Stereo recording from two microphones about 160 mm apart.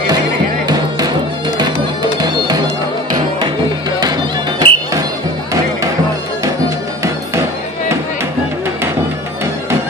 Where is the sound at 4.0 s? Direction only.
25° right (ahead or behind).